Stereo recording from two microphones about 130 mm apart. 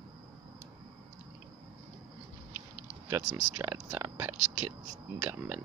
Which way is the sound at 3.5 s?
25° right (ahead or behind).